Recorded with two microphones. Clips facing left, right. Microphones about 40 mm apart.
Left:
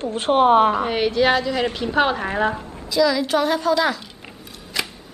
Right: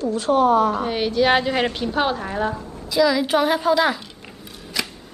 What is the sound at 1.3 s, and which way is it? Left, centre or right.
Speech, right.